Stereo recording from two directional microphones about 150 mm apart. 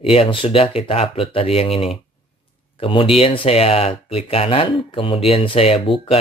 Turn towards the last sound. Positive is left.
turn(degrees=40)  # may be behind; listen again after turning